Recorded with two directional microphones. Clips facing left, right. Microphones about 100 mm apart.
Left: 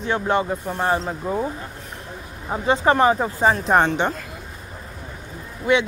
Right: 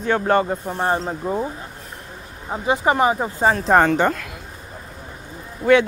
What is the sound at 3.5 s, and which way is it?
Speech, 45° right (ahead or behind).